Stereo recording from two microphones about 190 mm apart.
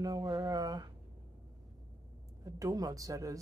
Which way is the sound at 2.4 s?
20° right (ahead or behind).